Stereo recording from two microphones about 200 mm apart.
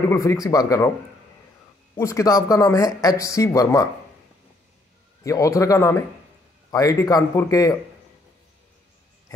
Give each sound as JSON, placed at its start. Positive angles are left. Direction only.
{"t": 0.1, "sound": "speech", "side_deg": 15}
{"t": 2.0, "sound": "speech", "side_deg": 15}
{"t": 5.2, "sound": "speech", "side_deg": 15}